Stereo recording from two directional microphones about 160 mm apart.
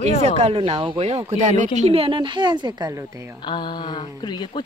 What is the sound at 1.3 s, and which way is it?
A woman's voice, 50° right (ahead or behind).